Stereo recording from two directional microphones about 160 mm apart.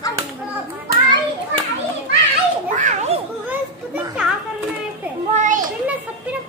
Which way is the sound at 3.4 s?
10° right (ahead or behind).